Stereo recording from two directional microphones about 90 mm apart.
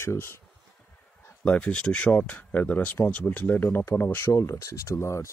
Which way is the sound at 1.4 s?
10° left (ahead or behind).